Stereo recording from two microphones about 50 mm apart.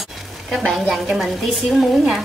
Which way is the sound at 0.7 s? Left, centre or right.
Centre.